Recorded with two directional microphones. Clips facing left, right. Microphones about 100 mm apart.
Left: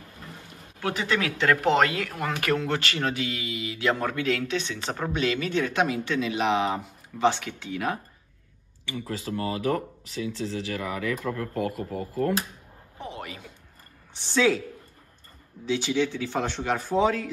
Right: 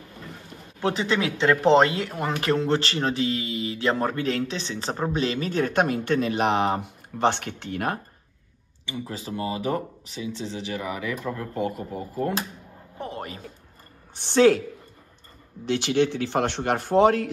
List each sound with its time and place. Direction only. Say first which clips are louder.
0.7 s speech: right 3 dB; 25° right (ahead or behind); by 8.0 s 50° right (ahead or behind)
8.8 s speech: left 1 dB; 20° right (ahead or behind)
13.0 s a sound: right 3 dB; 45° right (ahead or behind)
14.1 s a man's voice: right 5 dB; 55° right (ahead or behind)
15.6 s a man's voice: right 3 dB; 65° right (ahead or behind)